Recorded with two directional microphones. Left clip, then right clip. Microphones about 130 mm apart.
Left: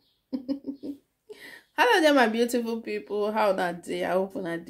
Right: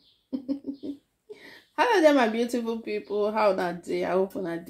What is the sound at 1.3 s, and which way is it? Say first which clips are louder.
Speech: left 1 dB; 15° left (ahead or behind).